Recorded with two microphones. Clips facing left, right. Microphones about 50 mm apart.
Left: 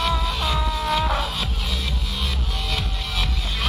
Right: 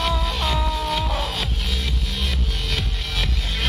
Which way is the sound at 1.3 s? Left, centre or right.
Right.